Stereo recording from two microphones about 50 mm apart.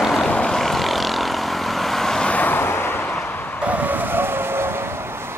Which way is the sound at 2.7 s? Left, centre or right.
Left.